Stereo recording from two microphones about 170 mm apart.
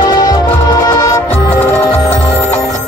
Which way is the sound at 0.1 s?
25° left (ahead or behind).